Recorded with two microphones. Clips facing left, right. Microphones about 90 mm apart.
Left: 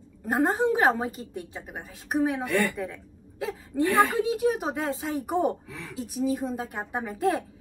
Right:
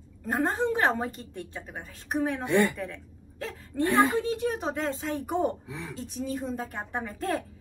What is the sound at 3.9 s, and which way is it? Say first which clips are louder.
Speech: even; 20° right (ahead or behind).